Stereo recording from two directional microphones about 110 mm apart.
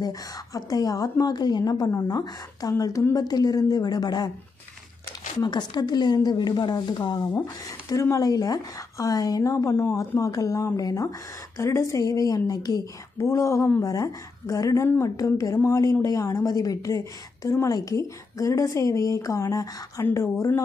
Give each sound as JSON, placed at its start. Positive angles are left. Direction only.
{"t": 0.6, "sound": "speech", "side_deg": 35}
{"t": 5.4, "sound": "a woman's voice", "side_deg": 40}